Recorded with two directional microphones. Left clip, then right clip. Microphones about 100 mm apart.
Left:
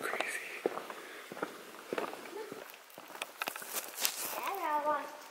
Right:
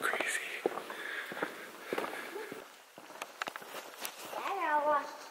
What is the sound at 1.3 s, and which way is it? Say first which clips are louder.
Walk: right 2 dB; 10° right (ahead or behind).